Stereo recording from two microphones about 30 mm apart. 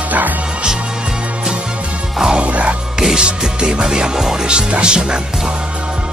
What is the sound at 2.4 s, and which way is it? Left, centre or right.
Music, right.